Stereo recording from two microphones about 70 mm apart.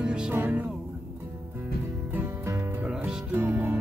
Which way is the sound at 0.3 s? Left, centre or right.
Right.